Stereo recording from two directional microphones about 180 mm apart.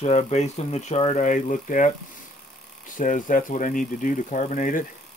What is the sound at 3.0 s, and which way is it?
Speech, 45° left (ahead or behind).